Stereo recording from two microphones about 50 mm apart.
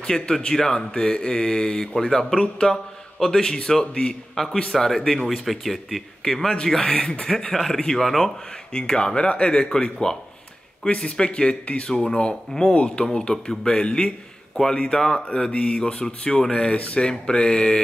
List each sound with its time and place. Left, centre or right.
0.0 s speech: centre
7.2 s speech: centre
8.7 s speech: centre
16.7 s speech: left